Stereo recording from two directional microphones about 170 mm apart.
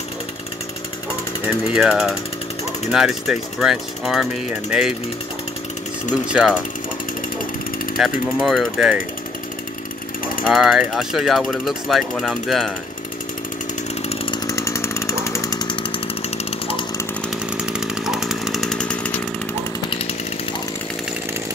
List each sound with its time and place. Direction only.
1.8 s speech: 5° right (ahead or behind)
6.3 s speech: 5° right (ahead or behind)
8.0 s speech: centre (ahead or behind)
10.4 s speech: centre (ahead or behind)
14.0 s chainsaw: 30° left (ahead or behind)
14.5 s chainsaw: 15° left (ahead or behind)
17.6 s chainsaw: 5° right (ahead or behind)